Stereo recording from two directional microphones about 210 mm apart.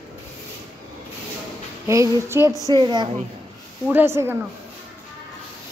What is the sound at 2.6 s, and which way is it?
Speech, 20° right (ahead or behind).